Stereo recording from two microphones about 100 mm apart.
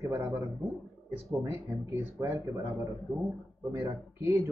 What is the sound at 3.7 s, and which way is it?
Speech, 25° right (ahead or behind).